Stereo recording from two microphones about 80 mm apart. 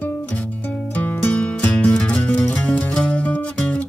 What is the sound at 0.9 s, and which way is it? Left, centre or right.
Music, centre.